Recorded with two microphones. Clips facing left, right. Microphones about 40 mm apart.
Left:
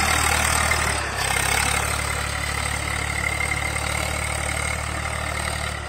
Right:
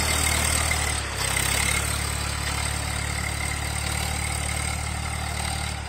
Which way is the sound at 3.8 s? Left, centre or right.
Left.